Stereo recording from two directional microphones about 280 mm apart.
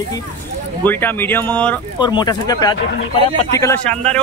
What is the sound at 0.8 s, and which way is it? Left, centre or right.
Speech, centre.